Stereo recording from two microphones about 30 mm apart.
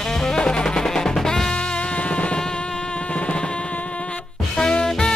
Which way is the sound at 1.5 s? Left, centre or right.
Left.